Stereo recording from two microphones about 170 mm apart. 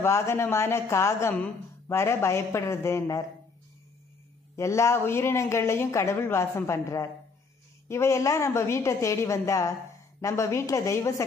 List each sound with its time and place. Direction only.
0.0 s a woman's voice: 15° left (ahead or behind)
4.6 s a woman's voice: 15° left (ahead or behind)